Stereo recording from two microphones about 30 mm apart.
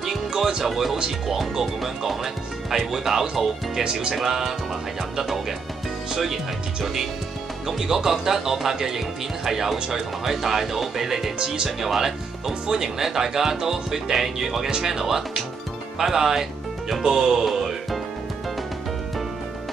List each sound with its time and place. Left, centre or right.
0.0 s music: centre
1.5 s speech: centre
3.8 s speech: right
4.1 s speech: centre
6.1 s speech: centre
11.3 s speech: right
11.8 s speech: centre
17.5 s music: centre